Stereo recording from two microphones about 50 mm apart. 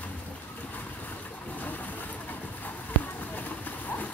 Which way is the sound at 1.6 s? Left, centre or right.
Left.